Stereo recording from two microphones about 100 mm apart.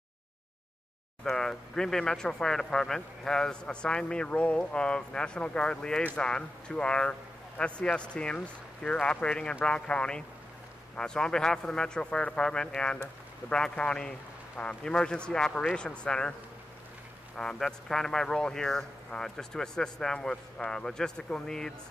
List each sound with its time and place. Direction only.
1.2 s speech: 5° left (ahead or behind)
17.4 s speech: 5° left (ahead or behind)